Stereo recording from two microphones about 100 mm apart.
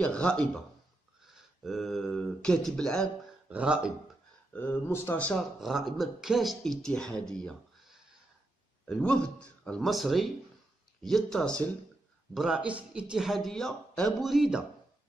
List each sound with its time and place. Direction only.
0.0 s speech: 10° left (ahead or behind)
1.2 s speech: 5° right (ahead or behind)
3.4 s speech: 10° right (ahead or behind)
4.5 s speech: 20° left (ahead or behind)
5.6 s a man's voice: 5° right (ahead or behind)
12.4 s speech: 5° right (ahead or behind)